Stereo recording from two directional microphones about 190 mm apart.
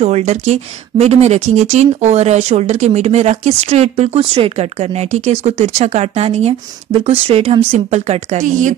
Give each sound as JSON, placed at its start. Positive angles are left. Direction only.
{"t": 0.0, "sound": "speech", "side_deg": -35}